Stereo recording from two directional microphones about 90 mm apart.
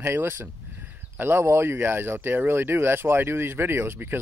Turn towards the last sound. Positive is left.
turn(degrees=-25)  # may be behind; listen again after turning